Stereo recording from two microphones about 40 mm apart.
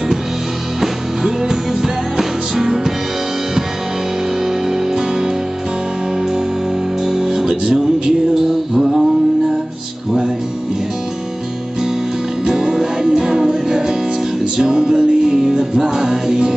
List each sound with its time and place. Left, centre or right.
0.7 s music: centre
7.1 s music: centre
12.4 s music: centre